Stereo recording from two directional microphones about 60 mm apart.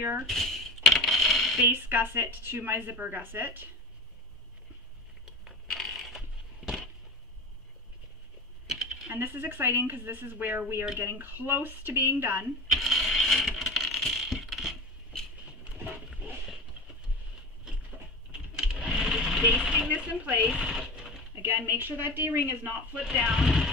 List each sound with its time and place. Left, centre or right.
0.0 s a woman's voice: right
0.3 s coin: centre
1.6 s a woman's voice: right
5.2 s a sound: centre
6.1 s coin: centre
8.6 s coin: centre
9.1 s a woman's voice: right
12.7 s a sound: centre
13.5 s coin: centre
18.3 s sewing machine: centre
21.4 s a woman's voice: right
22.9 s speech: centre